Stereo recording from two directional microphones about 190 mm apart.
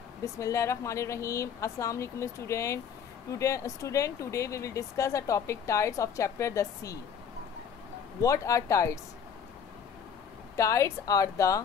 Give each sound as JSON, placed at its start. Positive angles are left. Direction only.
{"t": 0.2, "sound": "speech", "side_deg": 15}
{"t": 8.2, "sound": "speech", "side_deg": 15}
{"t": 10.5, "sound": "speech", "side_deg": 15}